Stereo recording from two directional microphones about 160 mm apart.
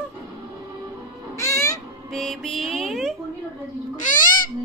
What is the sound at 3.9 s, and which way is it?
Owl, 55° left (ahead or behind).